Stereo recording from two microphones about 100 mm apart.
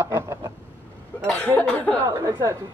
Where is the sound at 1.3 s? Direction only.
15° left (ahead or behind).